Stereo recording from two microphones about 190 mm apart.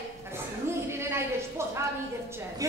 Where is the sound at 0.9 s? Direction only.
15° right (ahead or behind).